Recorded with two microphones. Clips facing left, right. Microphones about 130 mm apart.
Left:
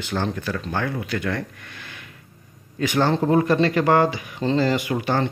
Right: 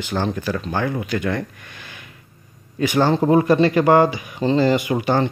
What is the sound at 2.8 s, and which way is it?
Speech, 10° right (ahead or behind).